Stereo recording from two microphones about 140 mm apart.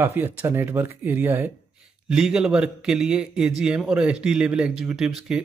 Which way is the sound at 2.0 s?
5° right (ahead or behind).